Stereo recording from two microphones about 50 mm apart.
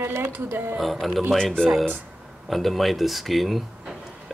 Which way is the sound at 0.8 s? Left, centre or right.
Centre.